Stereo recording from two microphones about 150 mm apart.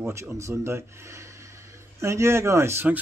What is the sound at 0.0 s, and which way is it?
Speech, 20° right (ahead or behind).